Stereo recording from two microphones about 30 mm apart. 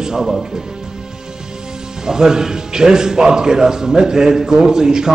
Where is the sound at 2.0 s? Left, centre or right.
Right.